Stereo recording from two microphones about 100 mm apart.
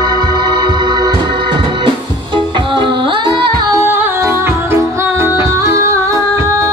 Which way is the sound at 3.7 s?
20° right (ahead or behind).